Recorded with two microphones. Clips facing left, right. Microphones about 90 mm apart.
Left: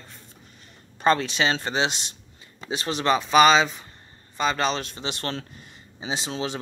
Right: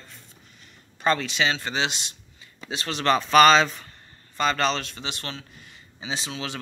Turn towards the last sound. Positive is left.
turn(degrees=25)  # may be behind; listen again after turning